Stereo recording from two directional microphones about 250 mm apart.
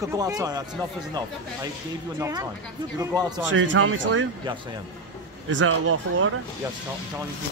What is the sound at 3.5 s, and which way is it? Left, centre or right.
Speech, right.